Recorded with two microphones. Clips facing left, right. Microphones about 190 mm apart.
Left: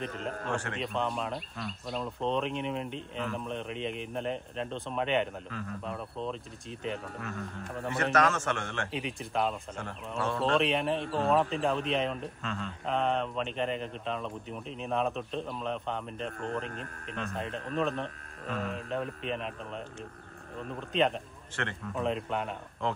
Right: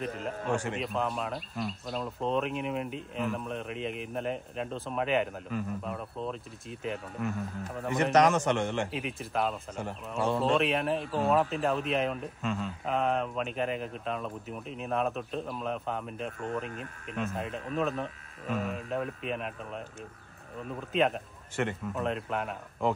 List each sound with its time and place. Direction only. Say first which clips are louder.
0.0 s speech: right 2 dB; 5° right (ahead or behind)
7.9 s a man's voice: right 4 dB; 15° right (ahead or behind)
8.9 s speech: even; centre (ahead or behind)
10.1 s speech: right 3 dB; 20° right (ahead or behind)
10.4 s speech: left 2 dB; centre (ahead or behind)